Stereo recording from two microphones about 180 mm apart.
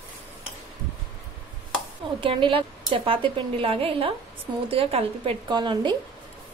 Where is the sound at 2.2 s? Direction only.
30° right (ahead or behind).